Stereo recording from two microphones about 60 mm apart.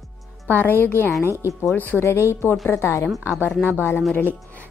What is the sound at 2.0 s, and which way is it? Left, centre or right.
A woman's voice, left.